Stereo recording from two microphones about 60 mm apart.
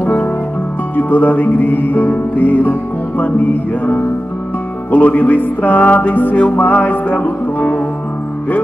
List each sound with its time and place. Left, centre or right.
0.9 s music: left